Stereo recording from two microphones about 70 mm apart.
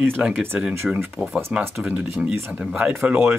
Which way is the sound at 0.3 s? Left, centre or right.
Right.